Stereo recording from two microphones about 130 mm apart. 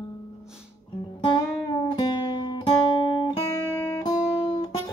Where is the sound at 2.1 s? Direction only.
35° left (ahead or behind).